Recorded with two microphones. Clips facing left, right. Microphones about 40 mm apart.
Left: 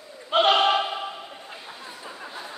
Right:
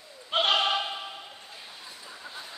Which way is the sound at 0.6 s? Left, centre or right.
Centre.